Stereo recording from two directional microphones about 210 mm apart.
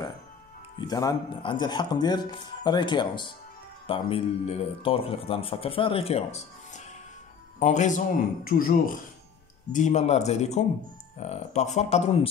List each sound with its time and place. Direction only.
0.7 s speech: 20° left (ahead or behind)